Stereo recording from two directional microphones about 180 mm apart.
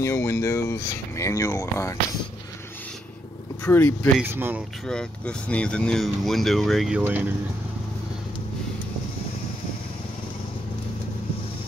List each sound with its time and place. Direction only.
0.0 s speech: 15° left (ahead or behind)
3.6 s speech: 10° left (ahead or behind)
4.2 s speech: 10° right (ahead or behind)
4.8 s speech: 5° left (ahead or behind)